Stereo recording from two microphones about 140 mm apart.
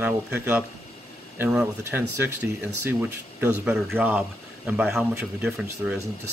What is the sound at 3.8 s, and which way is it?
Speech, centre (ahead or behind).